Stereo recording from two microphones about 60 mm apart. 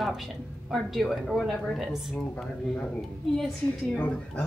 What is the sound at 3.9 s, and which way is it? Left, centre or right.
Speech, left.